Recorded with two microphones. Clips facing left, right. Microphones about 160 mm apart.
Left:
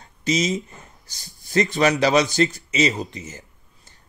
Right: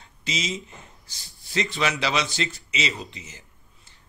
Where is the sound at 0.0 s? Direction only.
45° left (ahead or behind).